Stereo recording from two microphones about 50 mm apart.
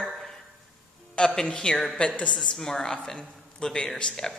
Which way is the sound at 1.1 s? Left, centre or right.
Centre.